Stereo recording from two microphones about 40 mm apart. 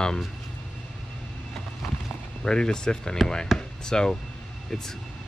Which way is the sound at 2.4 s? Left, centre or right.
Centre.